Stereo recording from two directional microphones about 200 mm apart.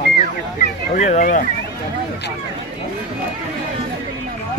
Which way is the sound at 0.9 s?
35° left (ahead or behind).